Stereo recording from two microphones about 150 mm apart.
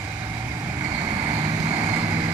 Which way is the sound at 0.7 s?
25° right (ahead or behind).